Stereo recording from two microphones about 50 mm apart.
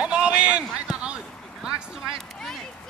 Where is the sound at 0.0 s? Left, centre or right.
Right.